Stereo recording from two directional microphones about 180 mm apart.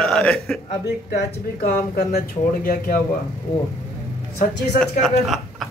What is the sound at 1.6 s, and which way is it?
Speech, 60° left (ahead or behind).